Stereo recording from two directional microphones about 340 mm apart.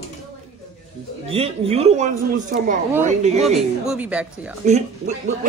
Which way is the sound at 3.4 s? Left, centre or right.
Centre.